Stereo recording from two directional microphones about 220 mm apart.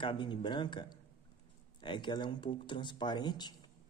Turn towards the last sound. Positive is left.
turn(degrees=20)  # may be behind; listen again after turning